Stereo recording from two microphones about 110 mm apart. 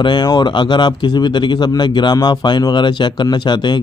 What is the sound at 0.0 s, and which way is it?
Speech, 40° left (ahead or behind).